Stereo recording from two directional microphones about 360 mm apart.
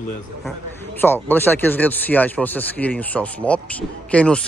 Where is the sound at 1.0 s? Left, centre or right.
Centre.